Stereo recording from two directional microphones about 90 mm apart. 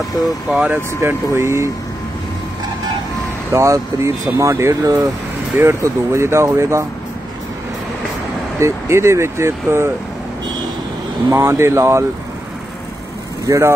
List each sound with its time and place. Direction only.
0.5 s speech: 10° right (ahead or behind)
1.0 s speech: 30° right (ahead or behind)
3.5 s speech: 35° right (ahead or behind)
8.5 s speech: 30° right (ahead or behind)
11.2 s speech: 35° right (ahead or behind)
13.5 s speech: 30° right (ahead or behind)